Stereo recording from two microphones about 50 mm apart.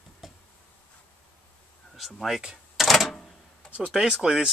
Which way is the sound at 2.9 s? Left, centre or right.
Centre.